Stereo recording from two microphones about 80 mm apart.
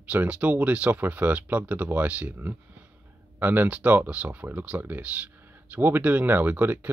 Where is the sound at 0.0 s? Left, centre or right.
Centre.